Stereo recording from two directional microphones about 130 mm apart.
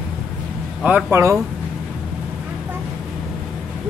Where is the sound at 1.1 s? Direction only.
25° right (ahead or behind).